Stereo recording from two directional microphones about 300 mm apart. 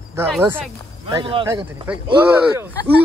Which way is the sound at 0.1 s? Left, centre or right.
Centre.